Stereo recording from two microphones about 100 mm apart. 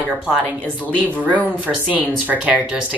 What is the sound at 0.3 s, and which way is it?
Speech, 15° right (ahead or behind).